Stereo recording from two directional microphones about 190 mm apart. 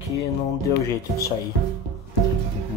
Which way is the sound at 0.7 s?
25° right (ahead or behind).